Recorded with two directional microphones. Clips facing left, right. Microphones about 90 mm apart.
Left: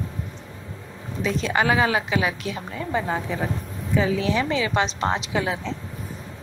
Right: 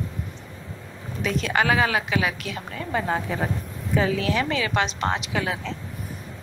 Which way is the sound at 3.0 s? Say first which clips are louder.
Even; 20° right (ahead or behind).